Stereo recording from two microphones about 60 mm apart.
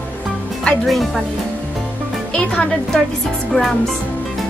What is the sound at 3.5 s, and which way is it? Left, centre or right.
Music, centre.